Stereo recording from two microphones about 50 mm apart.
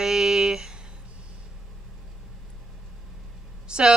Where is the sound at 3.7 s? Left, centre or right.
Centre.